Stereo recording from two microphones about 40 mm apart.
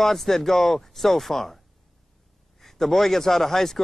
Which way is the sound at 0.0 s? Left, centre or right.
Centre.